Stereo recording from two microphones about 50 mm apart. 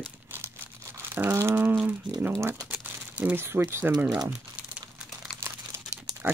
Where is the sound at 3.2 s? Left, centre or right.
Right.